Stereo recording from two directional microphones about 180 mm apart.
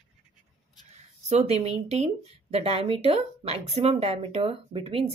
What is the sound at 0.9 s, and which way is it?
Speech, 40° right (ahead or behind).